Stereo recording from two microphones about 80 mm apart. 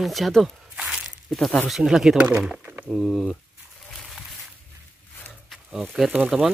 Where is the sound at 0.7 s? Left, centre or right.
Centre.